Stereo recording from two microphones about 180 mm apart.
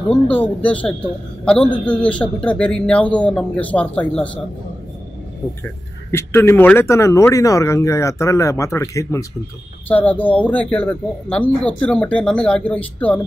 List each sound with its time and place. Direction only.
0.1 s speech: 10° left (ahead or behind)
6.1 s speech: 15° left (ahead or behind)